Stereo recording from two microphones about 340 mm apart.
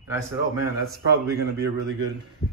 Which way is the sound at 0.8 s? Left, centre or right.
Right.